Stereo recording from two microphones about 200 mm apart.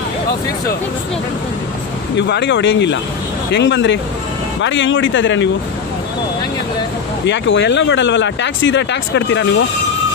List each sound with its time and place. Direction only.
2.1 s speech: 60° left (ahead or behind)
7.2 s speech: 60° left (ahead or behind)